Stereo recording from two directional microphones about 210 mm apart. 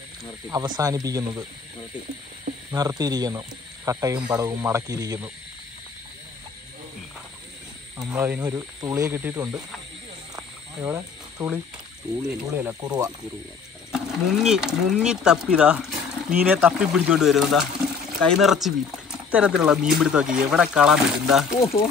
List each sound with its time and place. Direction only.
0.5 s speech: 15° right (ahead or behind)
2.7 s speech: 15° right (ahead or behind)
8.0 s speech: 10° right (ahead or behind)
10.3 s frog: 15° right (ahead or behind)
12.3 s speech: 5° right (ahead or behind)
12.8 s speech: 20° right (ahead or behind)
13.9 s speech: 5° right (ahead or behind)